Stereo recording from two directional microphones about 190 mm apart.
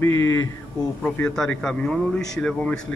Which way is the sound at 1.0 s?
5° left (ahead or behind).